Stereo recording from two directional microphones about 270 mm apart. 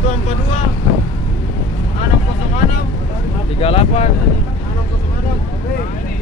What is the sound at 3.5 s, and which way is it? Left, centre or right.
Speech, left.